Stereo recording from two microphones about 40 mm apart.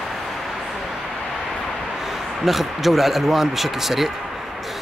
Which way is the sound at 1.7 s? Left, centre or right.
Centre.